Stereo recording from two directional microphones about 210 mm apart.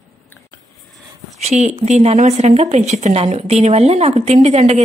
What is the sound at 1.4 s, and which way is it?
A woman's voice, 30° right (ahead or behind).